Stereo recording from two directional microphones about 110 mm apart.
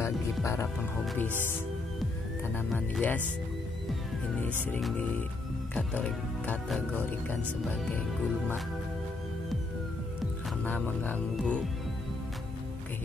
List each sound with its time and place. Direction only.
0.0 s music: 25° left (ahead or behind)
2.7 s speech: 5° left (ahead or behind)
5.8 s speech: 15° left (ahead or behind)
10.6 s speech: 10° left (ahead or behind)